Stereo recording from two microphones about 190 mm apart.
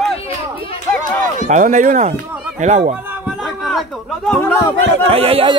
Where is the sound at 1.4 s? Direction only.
40° right (ahead or behind).